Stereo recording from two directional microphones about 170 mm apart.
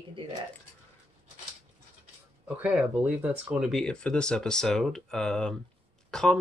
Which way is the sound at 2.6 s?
10° right (ahead or behind).